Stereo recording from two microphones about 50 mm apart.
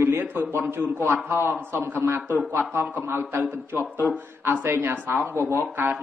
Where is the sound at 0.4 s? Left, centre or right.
Right.